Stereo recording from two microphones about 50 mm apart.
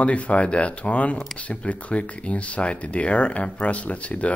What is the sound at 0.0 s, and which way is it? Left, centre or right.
Speech, left.